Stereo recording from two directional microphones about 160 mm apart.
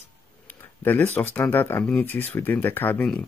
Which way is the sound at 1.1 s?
10° left (ahead or behind).